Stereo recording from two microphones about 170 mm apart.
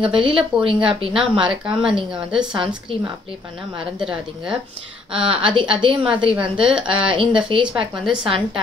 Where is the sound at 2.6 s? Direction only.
30° right (ahead or behind).